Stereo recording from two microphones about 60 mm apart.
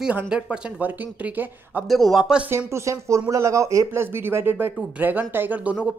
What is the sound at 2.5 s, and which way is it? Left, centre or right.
Speech, right.